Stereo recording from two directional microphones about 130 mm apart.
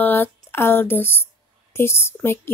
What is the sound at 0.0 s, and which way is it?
A woman's voice, 15° left (ahead or behind).